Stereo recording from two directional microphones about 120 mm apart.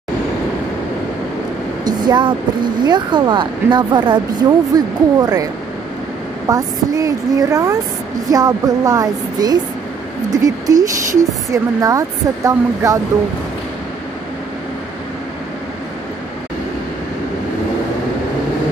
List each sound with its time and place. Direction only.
1.9 s speech: 40° right (ahead or behind)